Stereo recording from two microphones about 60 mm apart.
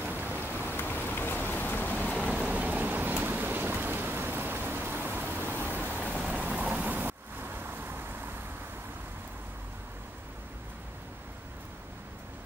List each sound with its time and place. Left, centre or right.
0.0 s rain: right
0.6 s rain: left
2.3 s rain: right
3.3 s a sound: right
5.9 s vehicle: left
6.2 s rain: right